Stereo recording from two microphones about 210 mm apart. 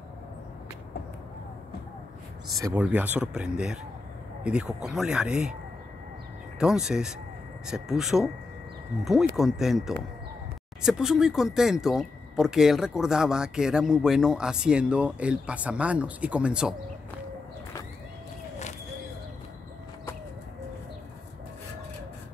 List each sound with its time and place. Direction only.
2.6 s speech: 5° right (ahead or behind)
6.6 s speech: 5° right (ahead or behind)